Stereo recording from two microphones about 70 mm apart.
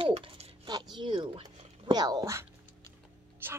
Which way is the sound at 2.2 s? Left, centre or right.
Right.